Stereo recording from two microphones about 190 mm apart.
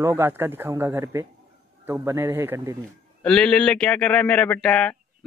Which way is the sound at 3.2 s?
5° left (ahead or behind).